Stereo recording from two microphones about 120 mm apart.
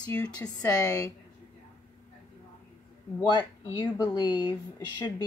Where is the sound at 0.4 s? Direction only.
30° left (ahead or behind).